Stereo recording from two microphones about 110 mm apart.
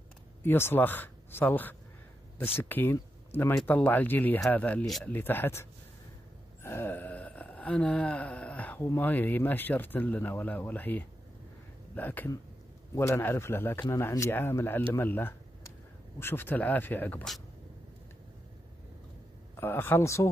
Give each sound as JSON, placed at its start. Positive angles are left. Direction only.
{"t": 0.4, "sound": "speech", "side_deg": 20}
{"t": 6.6, "sound": "gasp", "side_deg": 20}
{"t": 11.9, "sound": "speech", "side_deg": 15}
{"t": 19.5, "sound": "speech", "side_deg": 20}